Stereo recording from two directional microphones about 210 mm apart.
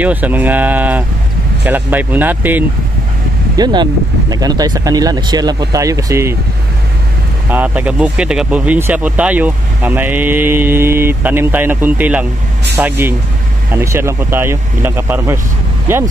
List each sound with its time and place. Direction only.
0.0 s speech: 10° right (ahead or behind)
3.5 s speech: 20° right (ahead or behind)
7.4 s speech: 10° right (ahead or behind)